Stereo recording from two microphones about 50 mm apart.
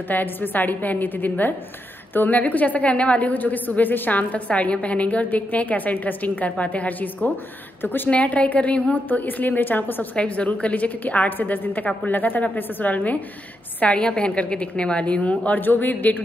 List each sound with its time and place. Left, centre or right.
0.1 s a woman's voice: left
8.1 s a woman's voice: left
10.1 s a woman's voice: left